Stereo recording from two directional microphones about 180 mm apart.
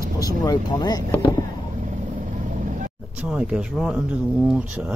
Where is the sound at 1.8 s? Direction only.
45° right (ahead or behind).